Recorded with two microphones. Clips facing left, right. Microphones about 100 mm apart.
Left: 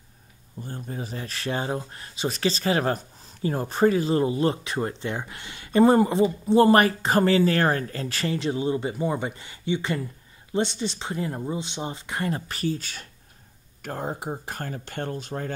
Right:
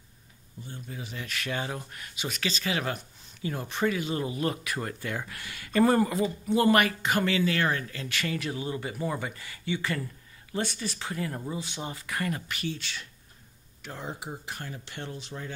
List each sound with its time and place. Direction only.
0.6 s speech: 45° left (ahead or behind)